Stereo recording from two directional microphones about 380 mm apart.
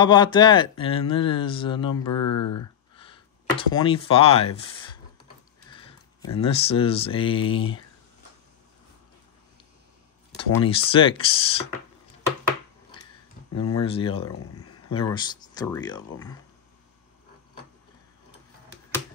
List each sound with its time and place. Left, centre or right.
0.0 s speech: centre
2.0 s speech: left
3.0 s speech: centre
5.7 s a sound: centre
6.3 s speech: centre
10.6 s speech: centre
13.5 s speech: left
13.8 s speech: centre
14.2 s speech: left
14.9 s speech: centre